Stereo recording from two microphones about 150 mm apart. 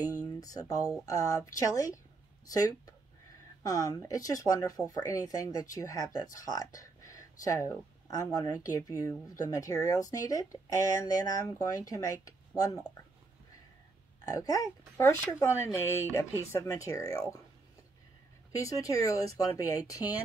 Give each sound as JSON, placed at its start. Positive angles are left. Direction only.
{"t": 0.0, "sound": "speech", "side_deg": 25}
{"t": 14.2, "sound": "speech", "side_deg": 25}
{"t": 18.7, "sound": "speech", "side_deg": 20}